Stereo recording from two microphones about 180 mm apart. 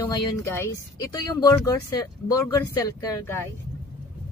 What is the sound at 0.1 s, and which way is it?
Speech, 15° left (ahead or behind).